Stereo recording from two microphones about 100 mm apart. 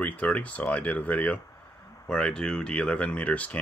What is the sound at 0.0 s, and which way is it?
Speech, 15° left (ahead or behind).